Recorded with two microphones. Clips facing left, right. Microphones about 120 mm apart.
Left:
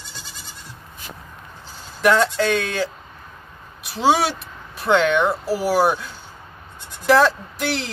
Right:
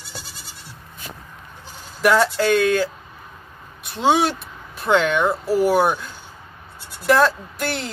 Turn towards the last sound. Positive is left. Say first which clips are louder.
# left 1 dB
turn(degrees=0)  # may be behind; listen again after turning